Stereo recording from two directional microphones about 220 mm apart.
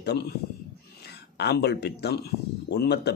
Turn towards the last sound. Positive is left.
turn(degrees=50)  # may be behind; listen again after turning